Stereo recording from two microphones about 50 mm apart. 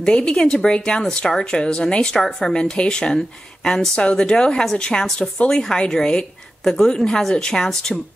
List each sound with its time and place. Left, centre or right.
0.0 s speech: centre
3.9 s a woman's voice: left